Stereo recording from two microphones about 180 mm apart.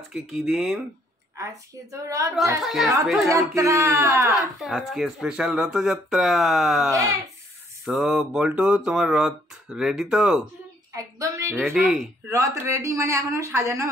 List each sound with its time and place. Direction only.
0.1 s speech: centre (ahead or behind)
1.3 s speech: 15° right (ahead or behind)
2.6 s speech: centre (ahead or behind)
3.3 s speech: 15° right (ahead or behind)
4.6 s speech: centre (ahead or behind)
6.9 s speech: 15° right (ahead or behind)
7.8 s speech: centre (ahead or behind)
10.9 s a sound: 20° right (ahead or behind)
11.5 s speech: centre (ahead or behind)
12.3 s speech: 15° right (ahead or behind)